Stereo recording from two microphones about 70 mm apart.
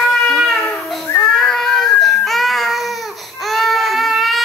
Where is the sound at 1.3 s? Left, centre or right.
Centre.